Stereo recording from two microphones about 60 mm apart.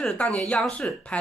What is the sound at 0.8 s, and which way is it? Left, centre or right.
Speech, left.